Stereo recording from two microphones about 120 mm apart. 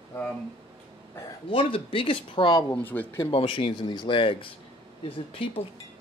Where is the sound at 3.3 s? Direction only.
45° left (ahead or behind).